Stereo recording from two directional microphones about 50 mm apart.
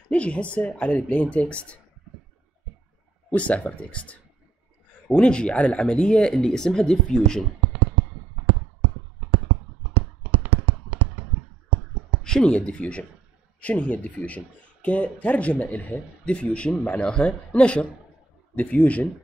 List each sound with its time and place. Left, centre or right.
0.1 s speech: left
3.3 s speech: left
9.9 s fireworks: right
12.2 s speech: centre; by 16.3 s left
16.3 s speech: left